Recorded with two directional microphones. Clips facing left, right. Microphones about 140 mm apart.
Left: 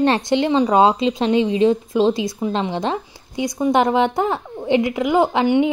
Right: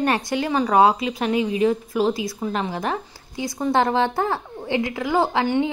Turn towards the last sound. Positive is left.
turn(degrees=15)  # may be behind; listen again after turning